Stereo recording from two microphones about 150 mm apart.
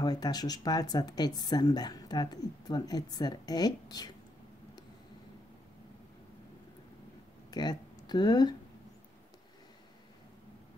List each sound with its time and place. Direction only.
0.0 s speech: 25° left (ahead or behind)
7.5 s speech: 25° left (ahead or behind)